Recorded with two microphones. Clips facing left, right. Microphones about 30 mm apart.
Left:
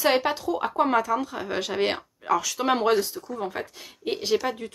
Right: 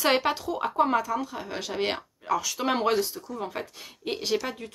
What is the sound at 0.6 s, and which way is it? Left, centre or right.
Speech, centre.